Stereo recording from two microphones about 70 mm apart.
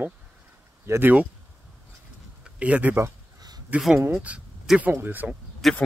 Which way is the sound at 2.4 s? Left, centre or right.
Centre.